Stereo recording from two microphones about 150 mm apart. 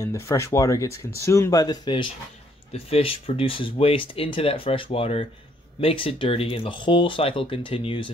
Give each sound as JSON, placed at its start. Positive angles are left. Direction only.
{"t": 0.0, "sound": "speech", "side_deg": 20}
{"t": 2.7, "sound": "speech", "side_deg": 40}